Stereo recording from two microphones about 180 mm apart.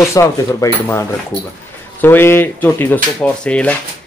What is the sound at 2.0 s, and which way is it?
Speech, 15° left (ahead or behind).